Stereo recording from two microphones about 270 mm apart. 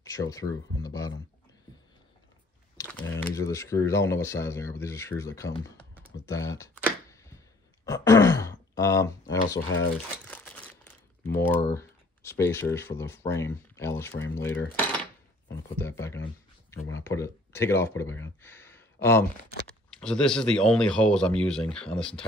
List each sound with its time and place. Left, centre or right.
0.0 s speech: centre
2.8 s speech: centre
6.2 s a sound: centre
9.7 s speech: left
10.2 s crumpling: centre
11.2 s speech: centre
18.4 s a sound: centre
20.0 s speech: centre